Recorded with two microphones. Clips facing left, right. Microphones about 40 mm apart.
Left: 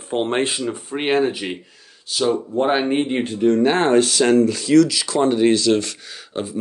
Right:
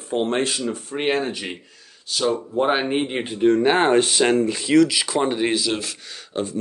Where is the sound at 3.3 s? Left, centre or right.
Centre.